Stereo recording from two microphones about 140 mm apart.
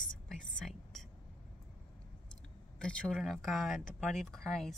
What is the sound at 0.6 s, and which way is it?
Whispering, 5° left (ahead or behind).